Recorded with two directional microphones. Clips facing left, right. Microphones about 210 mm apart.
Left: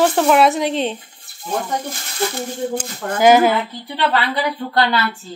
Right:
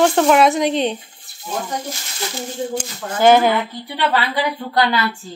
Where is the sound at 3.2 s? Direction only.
10° left (ahead or behind).